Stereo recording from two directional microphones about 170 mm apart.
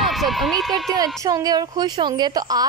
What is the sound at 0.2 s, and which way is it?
Speech, centre (ahead or behind).